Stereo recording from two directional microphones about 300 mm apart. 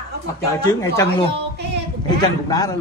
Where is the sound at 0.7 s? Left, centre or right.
Centre.